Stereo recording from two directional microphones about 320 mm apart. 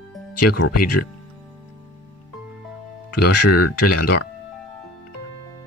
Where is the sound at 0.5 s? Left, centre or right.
Left.